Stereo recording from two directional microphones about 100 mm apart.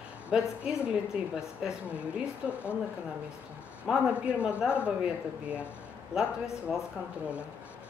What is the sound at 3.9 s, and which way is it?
Speech, 10° right (ahead or behind).